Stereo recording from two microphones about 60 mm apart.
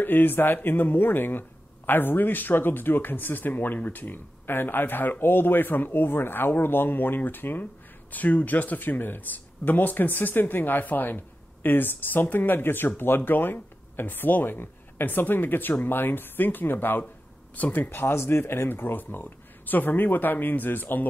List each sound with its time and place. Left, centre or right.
0.0 s speech: left